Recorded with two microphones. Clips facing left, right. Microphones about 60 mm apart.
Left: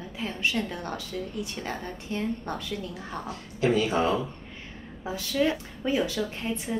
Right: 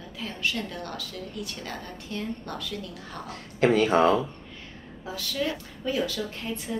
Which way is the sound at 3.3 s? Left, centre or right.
Right.